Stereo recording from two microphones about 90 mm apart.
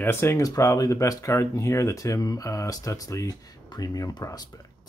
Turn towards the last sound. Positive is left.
turn(degrees=45)  # may be behind; listen again after turning